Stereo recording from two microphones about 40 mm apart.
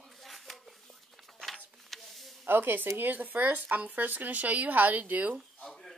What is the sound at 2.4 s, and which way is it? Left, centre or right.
Speech, right.